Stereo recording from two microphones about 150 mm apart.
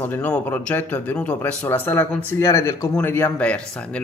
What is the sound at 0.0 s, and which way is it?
Speech, 10° left (ahead or behind).